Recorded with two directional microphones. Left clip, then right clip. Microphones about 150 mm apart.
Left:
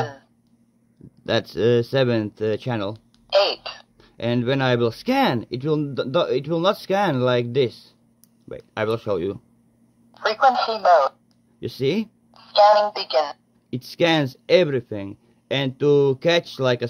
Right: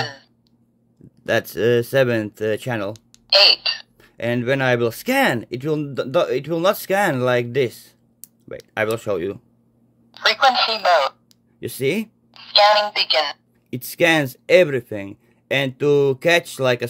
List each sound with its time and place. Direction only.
0.0 s a sound: 5° right (ahead or behind)
1.2 s speech: 10° right (ahead or behind)
3.3 s speech: centre (ahead or behind)
11.6 s speech: 15° right (ahead or behind)
12.4 s a woman's voice: centre (ahead or behind)
13.7 s speech: 15° right (ahead or behind)